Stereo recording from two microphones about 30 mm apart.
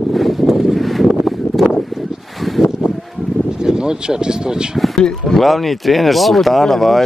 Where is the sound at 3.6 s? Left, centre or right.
Right.